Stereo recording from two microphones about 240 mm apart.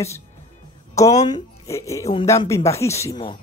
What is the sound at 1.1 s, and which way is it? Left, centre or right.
Speech, centre.